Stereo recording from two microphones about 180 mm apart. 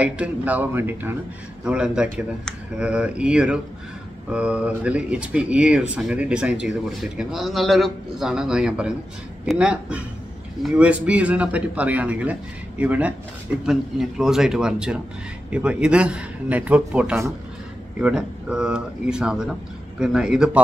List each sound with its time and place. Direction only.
0.0 s speech: 10° right (ahead or behind)